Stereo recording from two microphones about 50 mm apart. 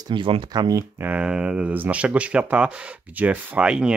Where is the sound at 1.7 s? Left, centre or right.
Right.